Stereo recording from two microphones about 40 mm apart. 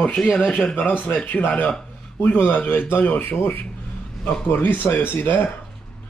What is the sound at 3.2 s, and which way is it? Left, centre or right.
Speech, left.